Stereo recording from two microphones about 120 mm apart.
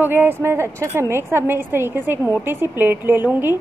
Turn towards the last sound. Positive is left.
turn(degrees=-15)  # may be behind; listen again after turning